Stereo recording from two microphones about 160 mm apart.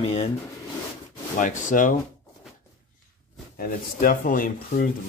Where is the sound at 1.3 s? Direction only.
50° left (ahead or behind).